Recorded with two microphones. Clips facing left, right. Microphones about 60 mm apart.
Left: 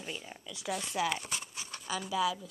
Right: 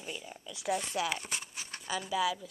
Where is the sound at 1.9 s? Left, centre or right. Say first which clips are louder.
Right 1 dB; centre.